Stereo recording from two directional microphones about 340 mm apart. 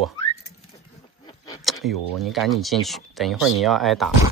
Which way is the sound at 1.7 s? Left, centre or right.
Centre.